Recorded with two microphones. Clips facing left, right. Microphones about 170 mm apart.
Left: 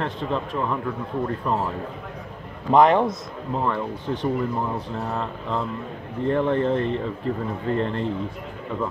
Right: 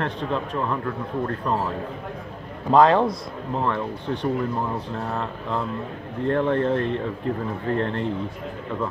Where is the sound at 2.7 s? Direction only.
20° left (ahead or behind).